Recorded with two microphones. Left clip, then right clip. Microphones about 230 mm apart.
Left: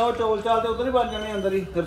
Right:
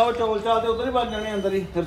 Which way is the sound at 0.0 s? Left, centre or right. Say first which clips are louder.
Right 1 dB; centre.